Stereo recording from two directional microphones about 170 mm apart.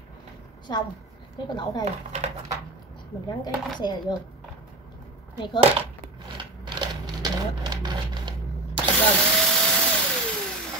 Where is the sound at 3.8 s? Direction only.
25° left (ahead or behind).